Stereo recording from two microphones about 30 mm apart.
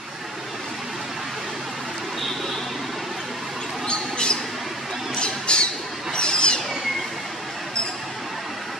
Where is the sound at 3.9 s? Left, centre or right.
Left.